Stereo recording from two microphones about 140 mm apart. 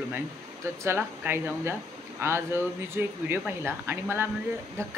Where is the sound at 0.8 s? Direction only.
15° right (ahead or behind).